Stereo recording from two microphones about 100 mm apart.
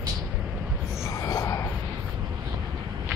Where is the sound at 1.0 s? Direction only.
30° left (ahead or behind).